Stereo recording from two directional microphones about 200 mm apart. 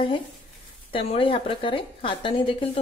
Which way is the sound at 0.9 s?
25° left (ahead or behind).